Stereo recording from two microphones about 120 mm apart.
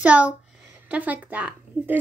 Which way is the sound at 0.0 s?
10° right (ahead or behind).